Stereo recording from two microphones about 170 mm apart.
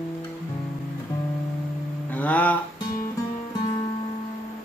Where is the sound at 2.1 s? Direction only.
10° left (ahead or behind).